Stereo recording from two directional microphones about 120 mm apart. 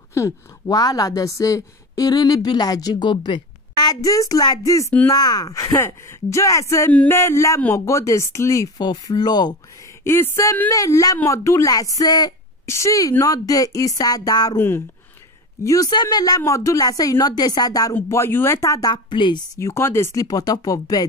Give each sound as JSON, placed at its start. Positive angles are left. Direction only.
{"t": 0.1, "sound": "a woman's voice", "side_deg": 30}
{"t": 8.8, "sound": "a woman's voice", "side_deg": 35}
{"t": 10.0, "sound": "a woman's voice", "side_deg": 20}
{"t": 15.6, "sound": "a woman's voice", "side_deg": 30}
{"t": 19.0, "sound": "a woman's voice", "side_deg": 40}
{"t": 19.6, "sound": "speech", "side_deg": 20}